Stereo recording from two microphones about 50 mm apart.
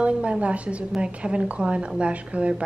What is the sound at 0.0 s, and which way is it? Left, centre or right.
A woman's voice, right.